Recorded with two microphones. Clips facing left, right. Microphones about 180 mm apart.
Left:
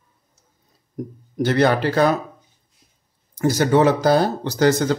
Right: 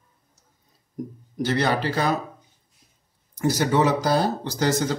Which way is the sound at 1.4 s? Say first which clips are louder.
Left 5 dB; 55° left (ahead or behind).